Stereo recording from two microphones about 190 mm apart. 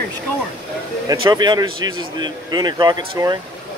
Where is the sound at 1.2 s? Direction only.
20° right (ahead or behind).